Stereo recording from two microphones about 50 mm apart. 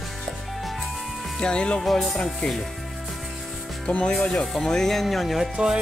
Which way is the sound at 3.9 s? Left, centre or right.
Left.